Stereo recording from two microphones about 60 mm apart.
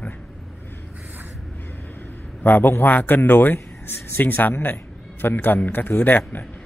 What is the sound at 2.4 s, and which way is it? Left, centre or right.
A man's voice, left.